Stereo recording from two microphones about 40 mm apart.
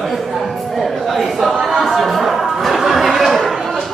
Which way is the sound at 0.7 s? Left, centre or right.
Centre.